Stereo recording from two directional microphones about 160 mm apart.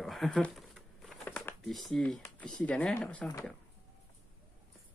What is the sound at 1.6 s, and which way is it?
Speech, centre (ahead or behind).